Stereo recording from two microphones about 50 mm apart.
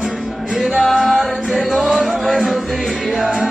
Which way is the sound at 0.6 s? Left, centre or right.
Centre.